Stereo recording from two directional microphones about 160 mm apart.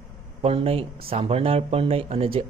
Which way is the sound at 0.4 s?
40° right (ahead or behind).